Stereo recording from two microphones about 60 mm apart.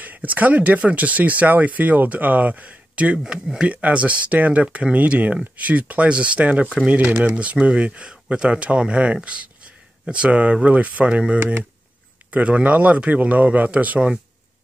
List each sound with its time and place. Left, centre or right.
0.0 s speech: right
3.3 s speech: centre
3.6 s speech: right
11.3 s speech: right
12.3 s speech: right